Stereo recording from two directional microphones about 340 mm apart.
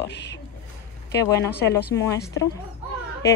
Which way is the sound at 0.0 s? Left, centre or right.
Left.